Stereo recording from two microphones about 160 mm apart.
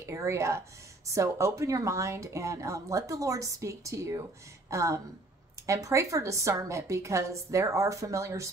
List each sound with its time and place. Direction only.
0.0 s a woman's voice: 20° right (ahead or behind)